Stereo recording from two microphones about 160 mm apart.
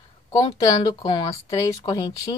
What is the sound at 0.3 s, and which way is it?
A woman's voice, 30° left (ahead or behind).